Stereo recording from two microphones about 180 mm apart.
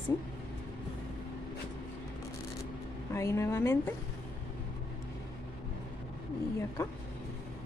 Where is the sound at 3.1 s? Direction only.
15° left (ahead or behind).